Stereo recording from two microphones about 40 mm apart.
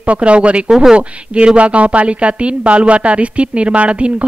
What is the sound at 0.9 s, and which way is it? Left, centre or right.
A woman's voice, right.